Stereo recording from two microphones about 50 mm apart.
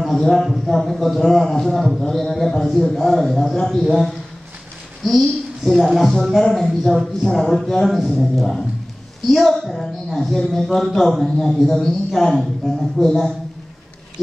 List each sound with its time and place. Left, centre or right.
0.0 s a man's voice: centre
5.0 s a man's voice: centre